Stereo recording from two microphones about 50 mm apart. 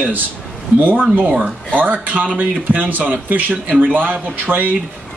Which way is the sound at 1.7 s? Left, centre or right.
Right.